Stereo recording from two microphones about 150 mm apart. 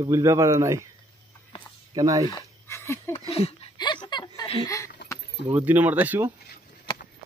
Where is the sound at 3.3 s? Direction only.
40° left (ahead or behind).